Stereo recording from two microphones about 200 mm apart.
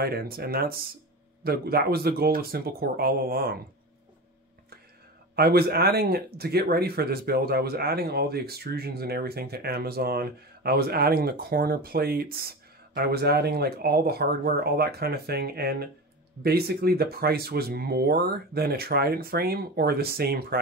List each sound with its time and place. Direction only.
0.0 s speech: 50° right (ahead or behind)
5.3 s speech: 50° right (ahead or behind)